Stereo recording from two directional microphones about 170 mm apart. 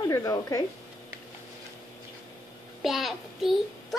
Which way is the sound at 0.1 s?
20° left (ahead or behind).